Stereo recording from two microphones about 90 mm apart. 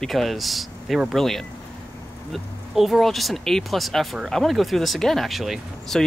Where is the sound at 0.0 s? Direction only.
Centre (ahead or behind).